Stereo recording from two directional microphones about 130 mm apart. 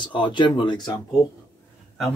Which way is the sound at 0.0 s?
40° left (ahead or behind).